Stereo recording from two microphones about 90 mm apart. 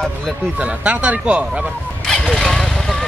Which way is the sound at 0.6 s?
15° right (ahead or behind).